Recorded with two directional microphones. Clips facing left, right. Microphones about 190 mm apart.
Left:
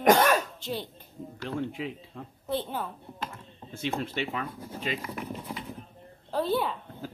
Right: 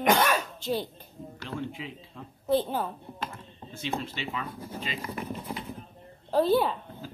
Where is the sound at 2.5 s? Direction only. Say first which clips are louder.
Right 5 dB; 35° right (ahead or behind).